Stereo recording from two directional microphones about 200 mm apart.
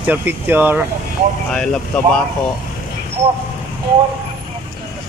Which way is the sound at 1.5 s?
5° left (ahead or behind).